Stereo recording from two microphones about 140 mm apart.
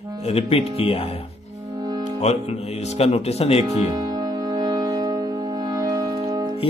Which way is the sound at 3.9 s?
30° right (ahead or behind).